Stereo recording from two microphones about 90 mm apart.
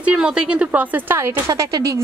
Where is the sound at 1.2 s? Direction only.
30° right (ahead or behind).